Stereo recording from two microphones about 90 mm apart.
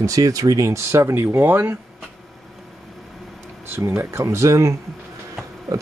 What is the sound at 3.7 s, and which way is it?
Speech, 25° right (ahead or behind).